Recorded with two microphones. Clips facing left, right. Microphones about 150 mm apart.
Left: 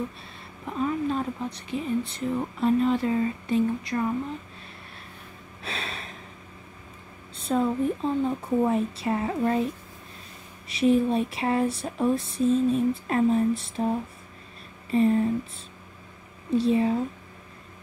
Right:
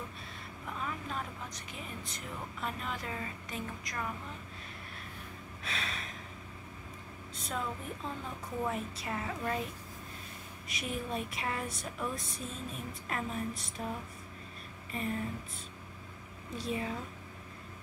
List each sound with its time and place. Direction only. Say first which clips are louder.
0.7 s speech: left 13 dB; 30° left (ahead or behind)
5.6 s a sound: left 5 dB; 30° left (ahead or behind)
7.3 s a sound: left 13 dB; 30° left (ahead or behind)
8.0 s speech: left 15 dB; 30° left (ahead or behind)
10.7 s speech: left 16 dB; 25° left (ahead or behind)
14.9 s speech: left 15 dB; 30° left (ahead or behind)
16.5 s speech: left 14 dB; 30° left (ahead or behind)